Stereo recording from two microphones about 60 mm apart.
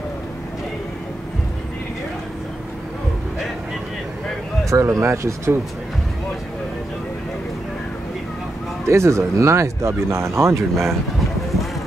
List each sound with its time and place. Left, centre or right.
4.6 s speech: right
8.8 s speech: right